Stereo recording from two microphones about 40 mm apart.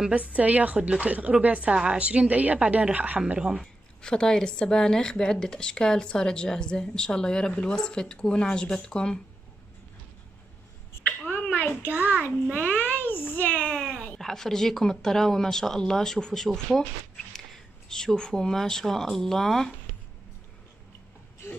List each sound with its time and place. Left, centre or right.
0.1 s a woman's voice: right
3.3 s speech: centre
4.0 s speech: left
11.1 s a sound: left
11.5 s child singing: left
12.7 s a sound: left
13.7 s a sound: centre
14.1 s speech: centre
17.8 s speech: centre